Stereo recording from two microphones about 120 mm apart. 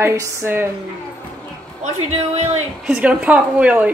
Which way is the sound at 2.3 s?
65° right (ahead or behind).